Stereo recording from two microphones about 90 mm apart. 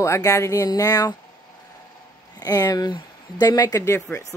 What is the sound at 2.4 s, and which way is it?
Speech, 45° left (ahead or behind).